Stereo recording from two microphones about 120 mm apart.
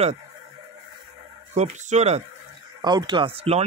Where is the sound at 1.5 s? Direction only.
75° right (ahead or behind).